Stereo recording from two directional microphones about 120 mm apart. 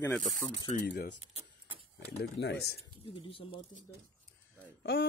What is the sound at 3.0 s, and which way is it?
Speech, 50° left (ahead or behind).